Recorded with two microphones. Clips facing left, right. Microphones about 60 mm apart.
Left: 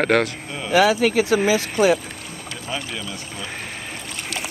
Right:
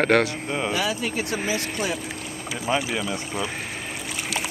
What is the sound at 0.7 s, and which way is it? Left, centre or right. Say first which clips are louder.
Speech: left 9 dB; left.